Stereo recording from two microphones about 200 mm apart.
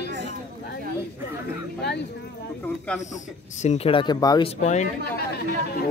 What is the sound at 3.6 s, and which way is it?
Speech, 35° left (ahead or behind).